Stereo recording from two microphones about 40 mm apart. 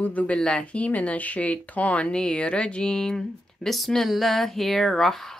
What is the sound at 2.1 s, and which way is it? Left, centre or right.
Speech, left.